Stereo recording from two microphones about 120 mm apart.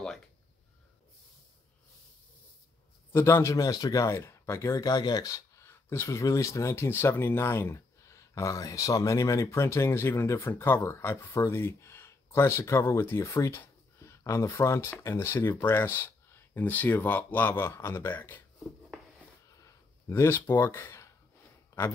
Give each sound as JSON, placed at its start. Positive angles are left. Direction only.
{"t": 3.1, "sound": "speech", "side_deg": 20}
{"t": 20.1, "sound": "speech", "side_deg": 20}
{"t": 21.7, "sound": "a sound", "side_deg": 25}